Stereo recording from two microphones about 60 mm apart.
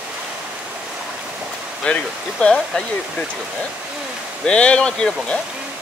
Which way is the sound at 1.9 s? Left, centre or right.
Left.